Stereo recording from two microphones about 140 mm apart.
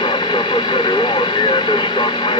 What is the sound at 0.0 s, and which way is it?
Speech, 35° left (ahead or behind).